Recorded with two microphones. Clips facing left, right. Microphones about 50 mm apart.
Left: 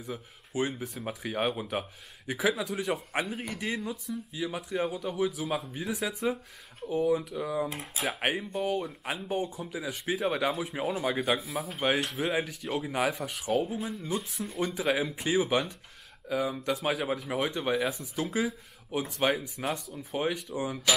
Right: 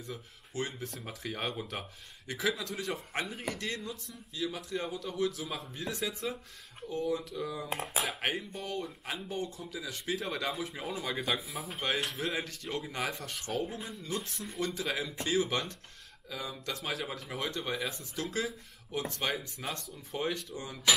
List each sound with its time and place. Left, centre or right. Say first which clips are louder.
0.0 s speech: left 4 dB; centre
11.4 s speech: left 5 dB; centre
12.2 s speech: left 5 dB; centre
14.6 s speech: left 6 dB; centre